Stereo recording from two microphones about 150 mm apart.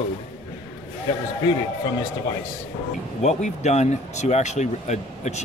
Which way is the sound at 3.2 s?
50° left (ahead or behind).